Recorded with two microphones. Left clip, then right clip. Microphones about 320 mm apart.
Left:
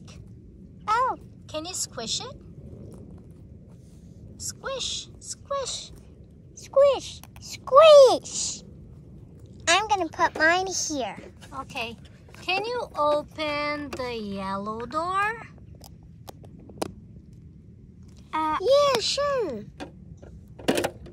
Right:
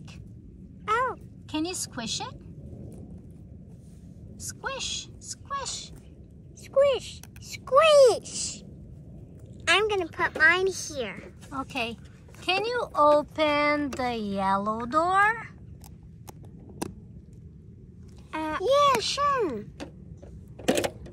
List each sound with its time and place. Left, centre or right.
0.8 s a sound: centre
1.5 s speech: centre
4.4 s speech: centre
6.6 s speech: centre
10.1 s speech: centre
11.5 s speech: centre
18.3 s a sound: left
18.9 s speech: centre
20.5 s a sound: centre